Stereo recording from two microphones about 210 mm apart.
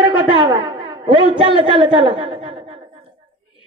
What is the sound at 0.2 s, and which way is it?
A woman's voice, 25° right (ahead or behind).